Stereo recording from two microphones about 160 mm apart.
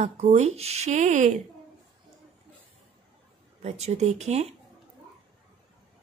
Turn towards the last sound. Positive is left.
turn(degrees=-40)  # may be behind; listen again after turning